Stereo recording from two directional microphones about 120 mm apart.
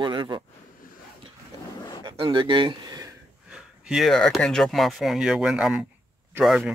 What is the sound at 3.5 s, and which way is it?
Speech, 5° right (ahead or behind).